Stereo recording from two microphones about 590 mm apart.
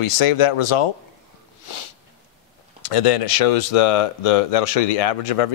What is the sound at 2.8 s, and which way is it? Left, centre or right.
Speech, left.